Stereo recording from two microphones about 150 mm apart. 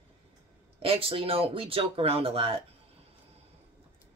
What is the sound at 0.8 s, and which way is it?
Speech, 40° right (ahead or behind).